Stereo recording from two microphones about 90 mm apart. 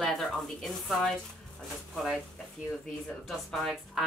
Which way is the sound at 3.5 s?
Centre (ahead or behind).